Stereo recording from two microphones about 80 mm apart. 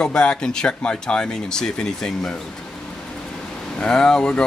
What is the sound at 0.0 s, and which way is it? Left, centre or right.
Speech, centre.